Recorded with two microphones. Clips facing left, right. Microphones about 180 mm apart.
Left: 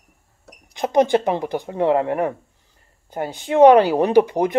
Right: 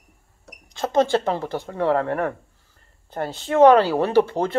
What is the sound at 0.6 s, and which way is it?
A woman's voice, 15° left (ahead or behind).